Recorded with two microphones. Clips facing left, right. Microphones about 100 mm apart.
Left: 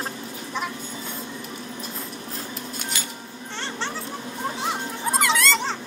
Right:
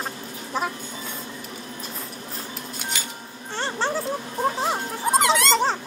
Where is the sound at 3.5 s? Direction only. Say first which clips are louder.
Right 5 dB; 40° right (ahead or behind).